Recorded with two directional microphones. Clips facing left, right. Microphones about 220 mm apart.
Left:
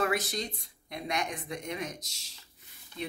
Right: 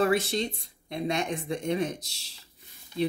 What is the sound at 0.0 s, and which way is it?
Speech, 30° right (ahead or behind).